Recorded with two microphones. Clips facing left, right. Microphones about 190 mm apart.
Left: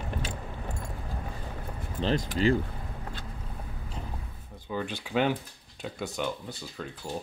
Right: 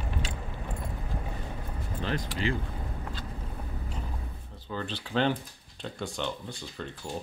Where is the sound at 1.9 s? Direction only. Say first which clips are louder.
Left 5 dB; 30° left (ahead or behind).